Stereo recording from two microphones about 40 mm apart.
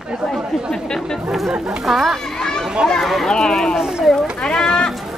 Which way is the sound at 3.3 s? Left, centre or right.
Centre.